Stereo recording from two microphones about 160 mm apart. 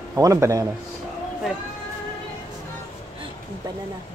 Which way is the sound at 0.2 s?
20° right (ahead or behind).